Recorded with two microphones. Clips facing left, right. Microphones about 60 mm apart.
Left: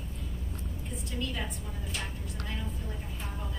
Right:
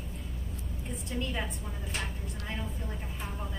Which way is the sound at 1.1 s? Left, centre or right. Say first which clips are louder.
Right 2 dB; right.